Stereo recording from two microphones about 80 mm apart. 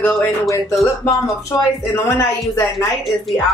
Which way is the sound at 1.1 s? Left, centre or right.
Centre.